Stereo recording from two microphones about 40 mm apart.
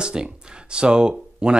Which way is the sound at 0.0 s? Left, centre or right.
Right.